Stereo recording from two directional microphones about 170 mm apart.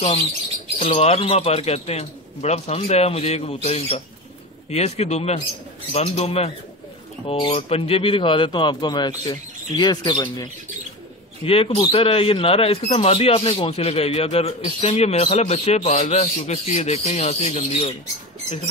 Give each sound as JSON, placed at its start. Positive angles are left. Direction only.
{"t": 0.7, "sound": "speech", "side_deg": 35}
{"t": 11.4, "sound": "speech", "side_deg": 35}